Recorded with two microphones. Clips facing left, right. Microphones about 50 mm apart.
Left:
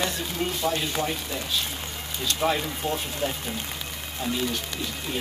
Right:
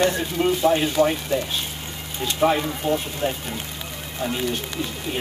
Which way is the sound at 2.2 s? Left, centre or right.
Centre.